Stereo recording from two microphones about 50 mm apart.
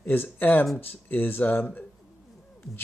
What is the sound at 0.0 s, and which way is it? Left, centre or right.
Speech, left.